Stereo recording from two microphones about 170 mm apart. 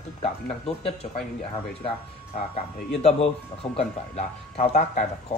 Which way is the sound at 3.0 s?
40° left (ahead or behind).